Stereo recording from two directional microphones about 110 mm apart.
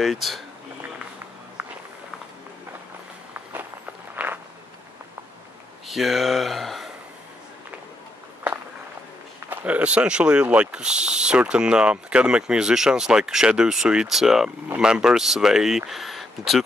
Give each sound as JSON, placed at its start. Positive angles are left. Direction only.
{"t": 0.0, "sound": "speech", "side_deg": 0}
{"t": 1.6, "sound": "walk", "side_deg": -10}
{"t": 4.1, "sound": "walk", "side_deg": -15}
{"t": 5.9, "sound": "speech", "side_deg": 0}
{"t": 9.5, "sound": "speech", "side_deg": -15}